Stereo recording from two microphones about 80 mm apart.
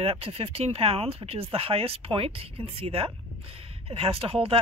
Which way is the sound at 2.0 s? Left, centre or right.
Right.